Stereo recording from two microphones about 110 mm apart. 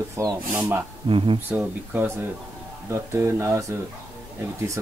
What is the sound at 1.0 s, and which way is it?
Speech, 50° right (ahead or behind).